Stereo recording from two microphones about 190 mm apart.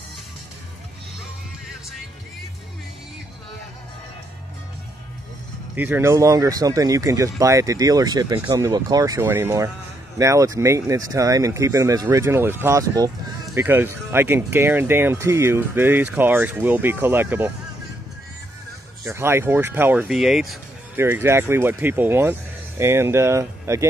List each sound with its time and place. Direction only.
5.8 s speech: 10° right (ahead or behind)
19.0 s speech: 15° right (ahead or behind)
21.0 s speech: 15° right (ahead or behind)